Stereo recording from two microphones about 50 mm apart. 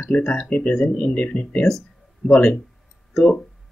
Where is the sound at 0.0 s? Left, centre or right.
Left.